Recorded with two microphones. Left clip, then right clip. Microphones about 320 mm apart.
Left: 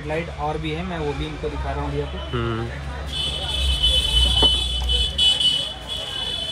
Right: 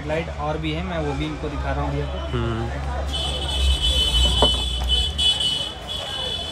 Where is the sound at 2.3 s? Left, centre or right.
Centre.